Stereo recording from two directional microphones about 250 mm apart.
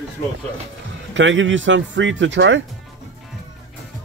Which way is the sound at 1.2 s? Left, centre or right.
Right.